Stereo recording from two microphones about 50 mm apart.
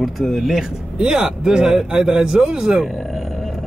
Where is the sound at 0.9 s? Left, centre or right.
Centre.